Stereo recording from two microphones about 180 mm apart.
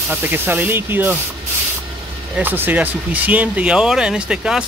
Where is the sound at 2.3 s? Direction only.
10° right (ahead or behind).